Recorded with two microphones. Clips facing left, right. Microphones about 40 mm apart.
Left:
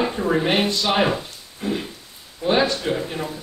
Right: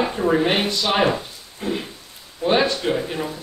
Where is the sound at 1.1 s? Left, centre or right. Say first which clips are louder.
Right 1 dB; centre.